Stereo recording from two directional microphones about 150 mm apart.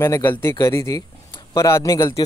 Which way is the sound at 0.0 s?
15° left (ahead or behind).